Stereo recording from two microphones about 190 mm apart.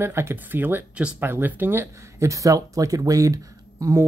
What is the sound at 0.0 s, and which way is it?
Speech, 10° right (ahead or behind).